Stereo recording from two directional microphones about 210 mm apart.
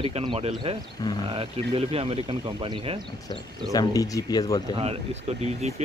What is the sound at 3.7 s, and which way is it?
Speech, 15° left (ahead or behind).